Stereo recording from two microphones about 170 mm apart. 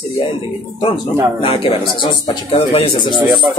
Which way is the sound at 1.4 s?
30° left (ahead or behind).